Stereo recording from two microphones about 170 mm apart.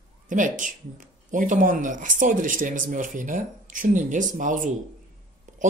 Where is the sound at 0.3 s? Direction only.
50° right (ahead or behind).